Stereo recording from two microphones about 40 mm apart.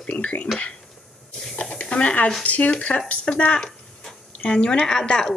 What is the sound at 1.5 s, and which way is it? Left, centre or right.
Snake, left.